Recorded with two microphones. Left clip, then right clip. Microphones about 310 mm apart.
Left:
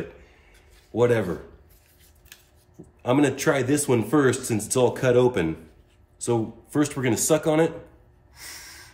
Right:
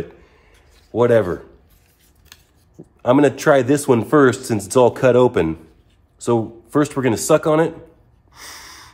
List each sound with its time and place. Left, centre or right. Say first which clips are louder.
0.9 s speech: right 7 dB; centre
3.0 s a man's voice: right 7 dB; centre
8.3 s snort: right 4 dB; centre